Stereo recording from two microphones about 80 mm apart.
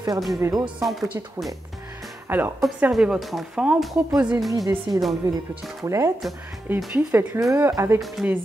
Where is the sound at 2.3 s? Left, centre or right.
Right.